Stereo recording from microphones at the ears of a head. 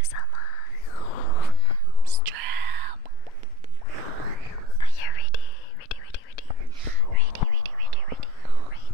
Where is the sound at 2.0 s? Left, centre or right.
Right.